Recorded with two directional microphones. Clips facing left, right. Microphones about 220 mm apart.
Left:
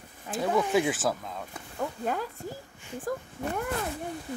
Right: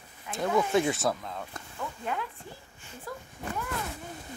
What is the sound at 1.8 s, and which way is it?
Speech, 40° left (ahead or behind).